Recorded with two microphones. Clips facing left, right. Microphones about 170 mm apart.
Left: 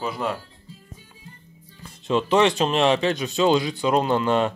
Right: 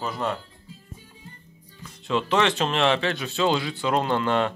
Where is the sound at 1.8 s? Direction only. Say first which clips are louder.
Left 3 dB; 20° left (ahead or behind).